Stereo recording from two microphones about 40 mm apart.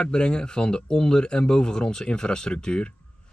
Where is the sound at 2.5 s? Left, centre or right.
Left.